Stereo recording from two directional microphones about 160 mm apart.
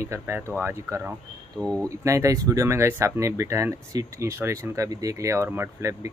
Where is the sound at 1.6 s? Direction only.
5° left (ahead or behind).